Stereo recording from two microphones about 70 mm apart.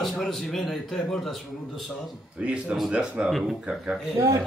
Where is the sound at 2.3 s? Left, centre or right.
Centre.